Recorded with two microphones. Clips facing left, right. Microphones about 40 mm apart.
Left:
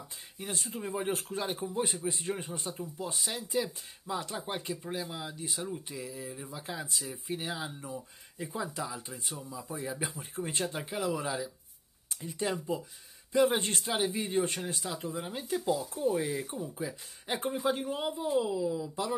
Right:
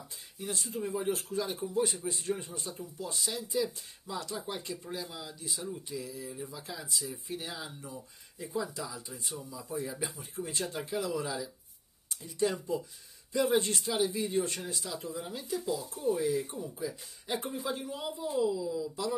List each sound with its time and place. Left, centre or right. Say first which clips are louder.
0.4 s speech: right 2 dB; left
4.8 s speech: left 3 dB; left
12.4 s speech: right 2 dB; left
13.3 s speech: left 1 dB; left
15.9 s speech: left 1 dB; left
16.2 s speech: right 2 dB; left